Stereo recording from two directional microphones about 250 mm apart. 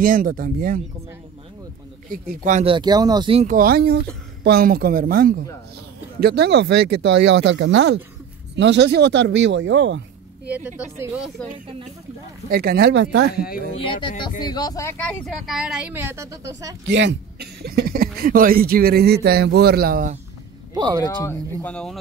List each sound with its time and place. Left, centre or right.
0.0 s speech: right
2.0 s speech: right
12.4 s speech: right
13.7 s speech: centre
16.8 s speech: right
20.7 s speech: centre
21.0 s speech: centre